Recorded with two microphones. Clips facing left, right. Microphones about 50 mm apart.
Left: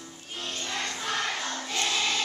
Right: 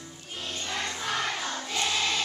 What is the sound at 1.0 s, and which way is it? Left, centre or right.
Choir, centre.